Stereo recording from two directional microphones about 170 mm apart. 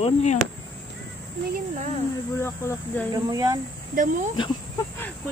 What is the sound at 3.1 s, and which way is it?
Speech, 20° right (ahead or behind).